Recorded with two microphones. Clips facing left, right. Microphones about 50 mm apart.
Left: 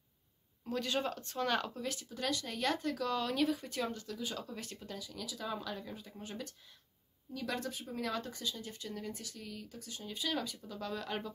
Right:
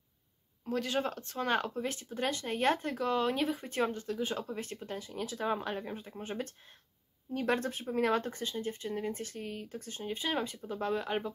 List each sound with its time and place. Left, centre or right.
0.7 s speech: centre